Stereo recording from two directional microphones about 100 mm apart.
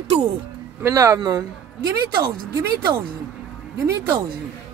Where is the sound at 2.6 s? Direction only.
35° right (ahead or behind).